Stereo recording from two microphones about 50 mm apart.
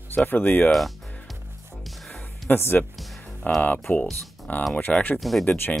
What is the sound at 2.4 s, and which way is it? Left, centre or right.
Speech, left.